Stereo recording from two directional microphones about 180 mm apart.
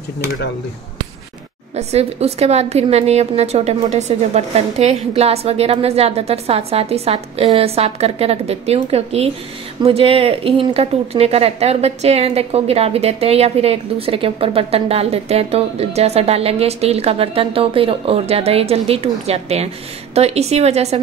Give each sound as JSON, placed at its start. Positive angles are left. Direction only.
{"t": 1.8, "sound": "speech", "side_deg": -35}